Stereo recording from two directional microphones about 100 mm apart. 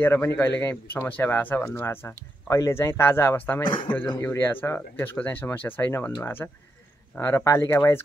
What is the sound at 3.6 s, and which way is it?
Speech, 55° left (ahead or behind).